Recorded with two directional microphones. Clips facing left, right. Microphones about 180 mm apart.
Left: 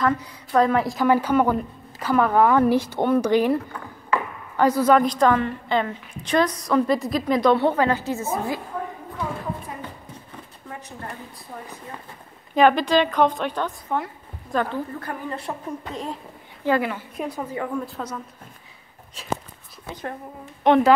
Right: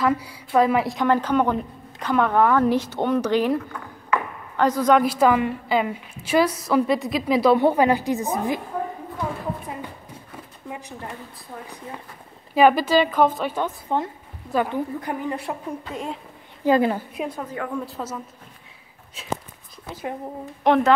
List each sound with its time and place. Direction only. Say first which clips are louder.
0.0 s a woman's voice: right 1 dB; 5° right (ahead or behind); by 3.5 s 10° left (ahead or behind)
4.6 s a woman's voice: left 1 dB; 10° left (ahead or behind)
5.0 s a woman's voice: right 1 dB; 5° right (ahead or behind)
12.5 s a woman's voice: right 1 dB; 5° right (ahead or behind)
13.9 s a woman's voice: right 2 dB; 25° right (ahead or behind)
14.5 s a woman's voice: right 2 dB; 15° right (ahead or behind)
17.2 s a woman's voice: left 1 dB; 10° left (ahead or behind)